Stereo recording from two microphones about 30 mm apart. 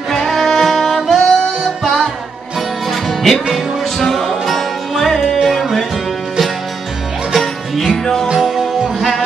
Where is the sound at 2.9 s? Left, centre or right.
Centre.